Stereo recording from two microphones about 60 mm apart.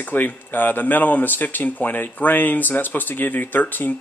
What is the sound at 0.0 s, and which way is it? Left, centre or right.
Speech, left.